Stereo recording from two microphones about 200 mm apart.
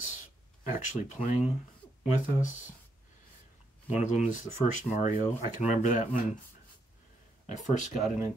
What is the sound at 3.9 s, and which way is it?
Speech, 35° left (ahead or behind).